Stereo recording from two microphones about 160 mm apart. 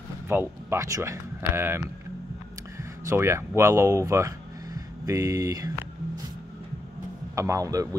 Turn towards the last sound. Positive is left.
turn(degrees=-20)  # may be behind; listen again after turning